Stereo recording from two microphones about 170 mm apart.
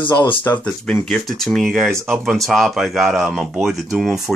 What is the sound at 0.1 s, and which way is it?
Speech, 25° left (ahead or behind).